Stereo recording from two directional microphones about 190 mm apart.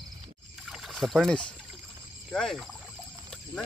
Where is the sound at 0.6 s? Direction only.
Centre (ahead or behind).